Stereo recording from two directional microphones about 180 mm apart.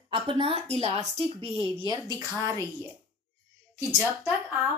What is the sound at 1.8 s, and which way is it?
Speech, 20° right (ahead or behind).